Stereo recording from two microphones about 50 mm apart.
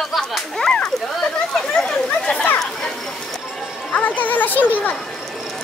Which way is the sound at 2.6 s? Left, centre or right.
Centre.